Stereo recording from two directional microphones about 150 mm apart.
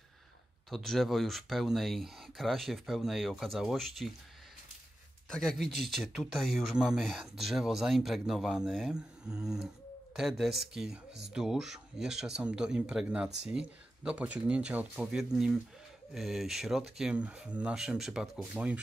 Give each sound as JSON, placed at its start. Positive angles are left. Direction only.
{"t": 0.7, "sound": "speech", "side_deg": 0}
{"t": 5.3, "sound": "speech", "side_deg": 5}